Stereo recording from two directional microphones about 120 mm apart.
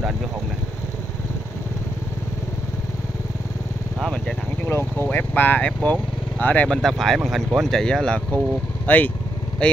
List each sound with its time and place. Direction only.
4.0 s speech: 5° left (ahead or behind)
4.6 s speech: 20° left (ahead or behind)